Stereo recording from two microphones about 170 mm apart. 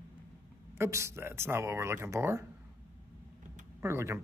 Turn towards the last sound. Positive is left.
turn(degrees=-15)  # may be behind; listen again after turning